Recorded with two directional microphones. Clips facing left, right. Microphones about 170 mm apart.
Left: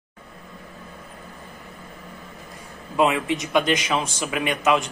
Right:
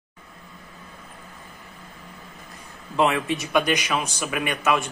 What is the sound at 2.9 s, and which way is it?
A man's voice, 15° left (ahead or behind).